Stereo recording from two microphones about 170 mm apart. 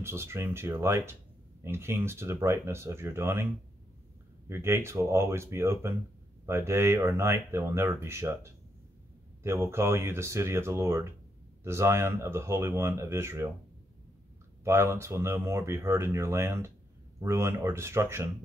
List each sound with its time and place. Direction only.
0.0 s speech: 15° right (ahead or behind)
4.5 s speech: 15° right (ahead or behind)
14.6 s speech: 15° right (ahead or behind)